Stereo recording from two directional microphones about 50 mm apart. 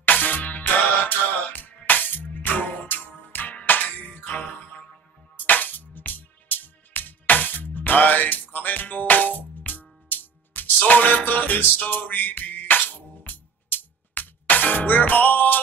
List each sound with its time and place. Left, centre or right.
0.0 s music: left